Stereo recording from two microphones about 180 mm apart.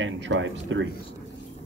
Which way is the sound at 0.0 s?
90° right.